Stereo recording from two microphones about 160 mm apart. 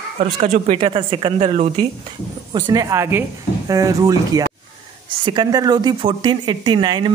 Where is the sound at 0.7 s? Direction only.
35° right (ahead or behind).